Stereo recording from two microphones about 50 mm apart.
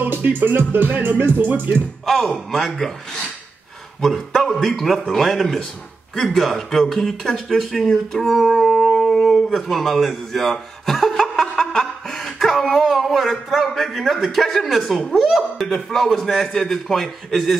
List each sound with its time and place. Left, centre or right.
0.0 s speech: right
2.0 s speech: centre
4.0 s speech: centre
8.1 s a sound: centre
9.6 s speech: centre